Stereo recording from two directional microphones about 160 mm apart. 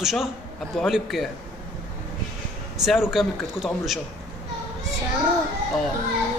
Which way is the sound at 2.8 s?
5° right (ahead or behind).